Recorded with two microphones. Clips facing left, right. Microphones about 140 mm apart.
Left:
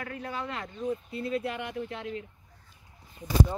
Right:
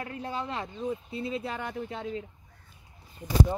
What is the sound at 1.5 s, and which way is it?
Speech, 40° right (ahead or behind).